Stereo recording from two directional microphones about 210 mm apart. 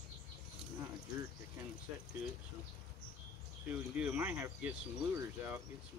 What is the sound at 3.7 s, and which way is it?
Speech, 10° right (ahead or behind).